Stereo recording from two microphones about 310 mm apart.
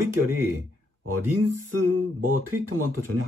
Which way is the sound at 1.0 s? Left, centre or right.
Right.